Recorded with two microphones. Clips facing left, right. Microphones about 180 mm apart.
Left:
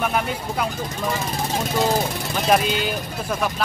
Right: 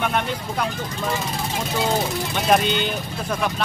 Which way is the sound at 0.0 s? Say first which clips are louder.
Even; 5° left (ahead or behind).